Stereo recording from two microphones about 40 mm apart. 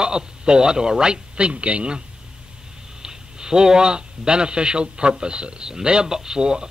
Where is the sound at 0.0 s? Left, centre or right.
Centre.